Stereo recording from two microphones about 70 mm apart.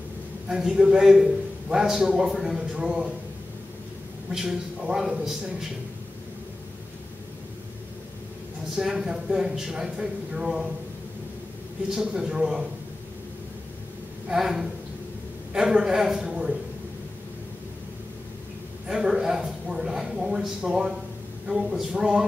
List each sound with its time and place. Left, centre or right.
0.5 s a man's voice: centre
4.3 s a man's voice: centre
8.7 s a man's voice: centre
11.9 s a man's voice: centre
14.2 s a man's voice: centre
18.9 s a man's voice: centre